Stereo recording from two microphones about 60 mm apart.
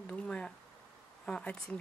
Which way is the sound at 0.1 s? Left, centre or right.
Centre.